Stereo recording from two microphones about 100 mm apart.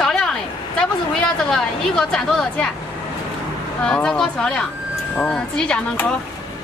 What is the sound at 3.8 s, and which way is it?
A woman's voice, 10° left (ahead or behind).